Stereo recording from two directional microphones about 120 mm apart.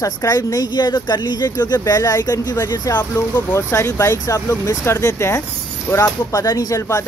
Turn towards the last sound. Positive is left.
turn(degrees=25)  # may be behind; listen again after turning